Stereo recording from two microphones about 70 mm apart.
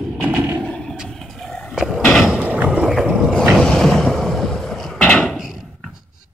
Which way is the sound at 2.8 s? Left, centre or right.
Centre.